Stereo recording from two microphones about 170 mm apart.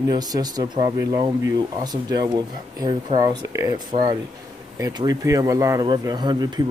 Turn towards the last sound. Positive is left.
turn(degrees=-25)  # may be behind; listen again after turning